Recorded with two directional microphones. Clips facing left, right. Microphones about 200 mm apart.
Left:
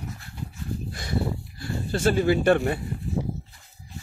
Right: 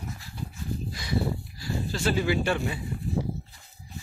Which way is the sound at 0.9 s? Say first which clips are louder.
Even; 50° left (ahead or behind).